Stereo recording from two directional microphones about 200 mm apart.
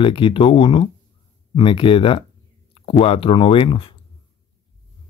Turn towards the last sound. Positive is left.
turn(degrees=25)  # may be behind; listen again after turning